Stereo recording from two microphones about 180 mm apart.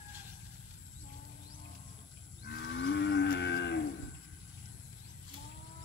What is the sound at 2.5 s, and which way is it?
Moo, 70° left (ahead or behind).